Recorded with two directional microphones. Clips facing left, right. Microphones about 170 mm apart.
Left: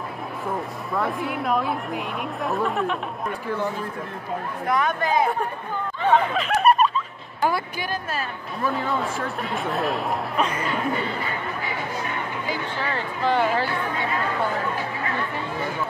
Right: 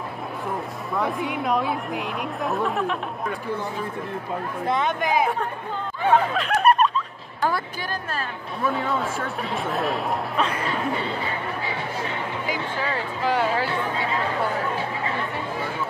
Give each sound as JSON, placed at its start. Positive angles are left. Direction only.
{"t": 0.9, "sound": "speech", "side_deg": 0}
{"t": 4.6, "sound": "speech", "side_deg": -25}
{"t": 6.0, "sound": "snicker", "side_deg": 0}
{"t": 7.4, "sound": "speech", "side_deg": 10}
{"t": 8.5, "sound": "speech", "side_deg": 0}
{"t": 12.4, "sound": "speech", "side_deg": -10}